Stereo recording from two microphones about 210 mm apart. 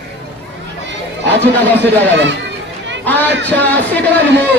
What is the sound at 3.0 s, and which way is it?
A man's voice, 10° left (ahead or behind).